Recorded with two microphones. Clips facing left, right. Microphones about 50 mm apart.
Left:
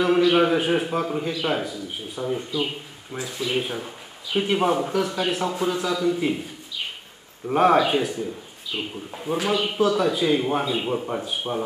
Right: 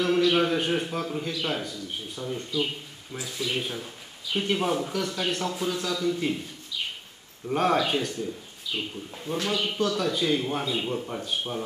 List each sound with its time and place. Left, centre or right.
0.0 s speech: centre